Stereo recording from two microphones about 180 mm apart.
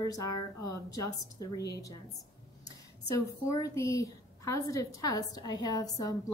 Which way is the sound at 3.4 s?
15° left (ahead or behind).